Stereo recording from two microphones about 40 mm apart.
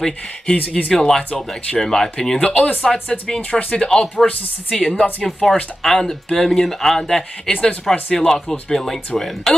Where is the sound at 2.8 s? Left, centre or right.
Centre.